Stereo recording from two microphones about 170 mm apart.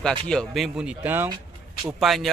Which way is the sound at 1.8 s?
Centre (ahead or behind).